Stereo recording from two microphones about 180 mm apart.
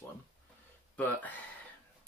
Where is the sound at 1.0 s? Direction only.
10° left (ahead or behind).